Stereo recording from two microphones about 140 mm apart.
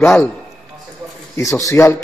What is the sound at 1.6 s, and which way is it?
Speech, 20° left (ahead or behind).